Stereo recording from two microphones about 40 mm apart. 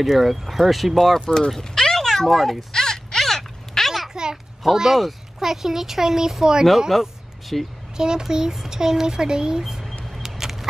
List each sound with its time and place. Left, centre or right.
0.0 s speech: centre
1.2 s speech: centre
1.6 s a sound: centre
4.1 s children playing: centre
4.6 s speech: centre
6.9 s a sound: centre
8.0 s speech: centre
9.6 s a sound: centre
10.1 s vehicle: centre